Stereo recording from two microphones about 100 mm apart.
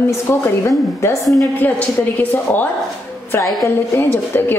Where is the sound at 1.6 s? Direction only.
20° left (ahead or behind).